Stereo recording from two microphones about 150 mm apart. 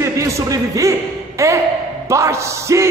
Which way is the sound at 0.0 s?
20° right (ahead or behind).